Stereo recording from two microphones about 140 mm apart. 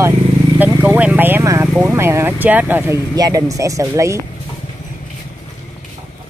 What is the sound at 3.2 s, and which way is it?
Speech, 25° right (ahead or behind).